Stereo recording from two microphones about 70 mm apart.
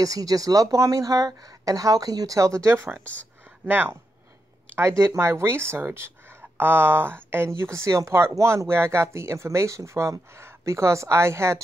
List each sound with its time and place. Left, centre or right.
0.0 s speech: right
3.6 s speech: right
4.7 s speech: right